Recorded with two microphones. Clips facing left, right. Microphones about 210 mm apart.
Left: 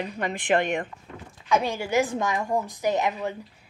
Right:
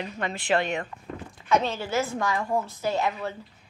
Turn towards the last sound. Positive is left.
turn(degrees=15)  # may be behind; listen again after turning